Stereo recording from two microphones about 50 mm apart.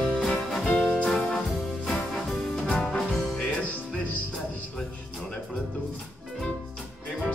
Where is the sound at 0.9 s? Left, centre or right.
Left.